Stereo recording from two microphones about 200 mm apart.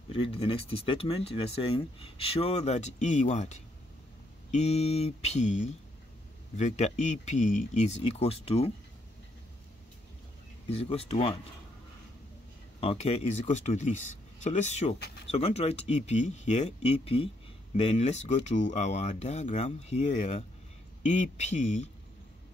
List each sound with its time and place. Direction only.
0.1 s speech: 25° left (ahead or behind)
10.7 s speech: 30° left (ahead or behind)
12.8 s speech: 35° left (ahead or behind)
15.0 s speech: 55° left (ahead or behind)
15.2 s speech: 30° left (ahead or behind)